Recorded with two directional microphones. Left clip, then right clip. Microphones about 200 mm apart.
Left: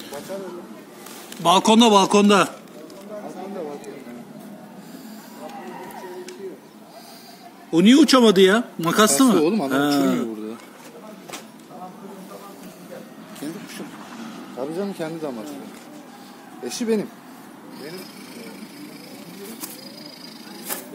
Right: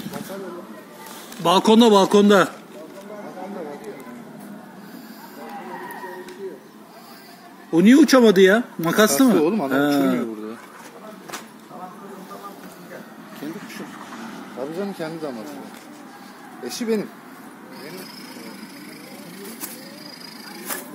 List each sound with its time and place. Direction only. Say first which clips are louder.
1.4 s a man's voice: even; 20° right (ahead or behind)
7.7 s speech: right 1 dB; 15° right (ahead or behind)
9.4 s speech: even; 20° left (ahead or behind)
9.8 s speech: right 2 dB; 15° right (ahead or behind)
14.6 s speech: left 1 dB; 15° left (ahead or behind)
16.6 s speech: left 1 dB; 15° left (ahead or behind)